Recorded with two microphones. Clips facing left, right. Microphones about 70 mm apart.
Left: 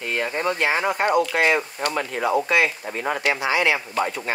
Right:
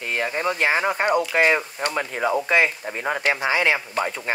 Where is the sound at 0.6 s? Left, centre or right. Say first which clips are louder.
Right 1 dB; right.